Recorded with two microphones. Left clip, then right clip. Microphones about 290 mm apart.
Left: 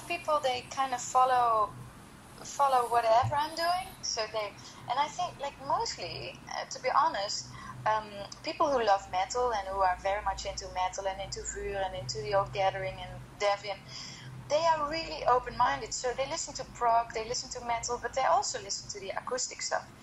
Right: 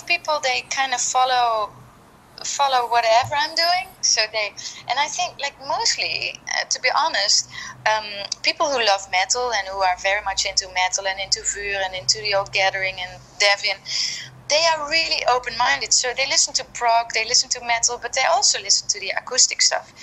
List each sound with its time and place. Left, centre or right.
0.3 s a woman's voice: right